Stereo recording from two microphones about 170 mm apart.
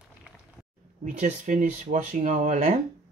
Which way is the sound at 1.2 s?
45° right (ahead or behind).